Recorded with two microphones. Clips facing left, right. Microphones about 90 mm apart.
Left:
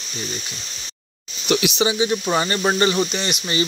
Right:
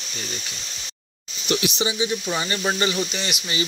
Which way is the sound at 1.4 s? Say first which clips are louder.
Left 4 dB; 80° left.